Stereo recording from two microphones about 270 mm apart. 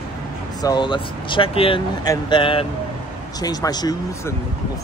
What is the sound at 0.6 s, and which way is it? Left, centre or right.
Speech, centre.